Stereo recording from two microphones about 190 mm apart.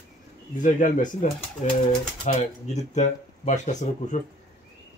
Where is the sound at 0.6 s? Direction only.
45° left (ahead or behind).